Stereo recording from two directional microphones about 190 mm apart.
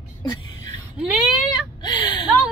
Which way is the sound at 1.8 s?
20° left (ahead or behind).